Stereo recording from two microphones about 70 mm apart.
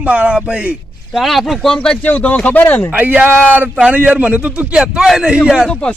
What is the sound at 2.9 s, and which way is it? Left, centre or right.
A man's voice, right.